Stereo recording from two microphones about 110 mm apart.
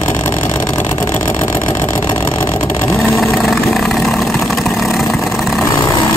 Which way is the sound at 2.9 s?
25° left (ahead or behind).